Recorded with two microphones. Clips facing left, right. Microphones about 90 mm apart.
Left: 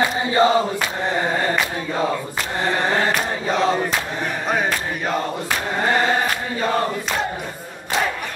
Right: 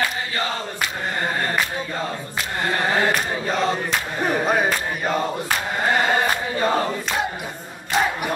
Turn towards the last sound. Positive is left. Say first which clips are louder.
# left 1 dB
turn(degrees=0)  # may be behind; listen again after turning